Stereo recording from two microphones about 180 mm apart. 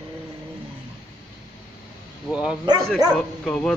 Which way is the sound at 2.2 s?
5° right (ahead or behind).